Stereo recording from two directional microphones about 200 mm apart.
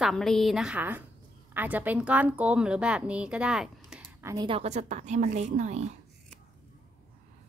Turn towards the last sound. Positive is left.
turn(degrees=-35)  # may be behind; listen again after turning